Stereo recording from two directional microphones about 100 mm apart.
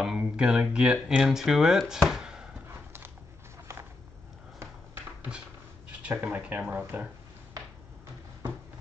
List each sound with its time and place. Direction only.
0.0 s speech: 5° right (ahead or behind)
2.7 s horse: 20° right (ahead or behind)
5.9 s speech: 15° right (ahead or behind)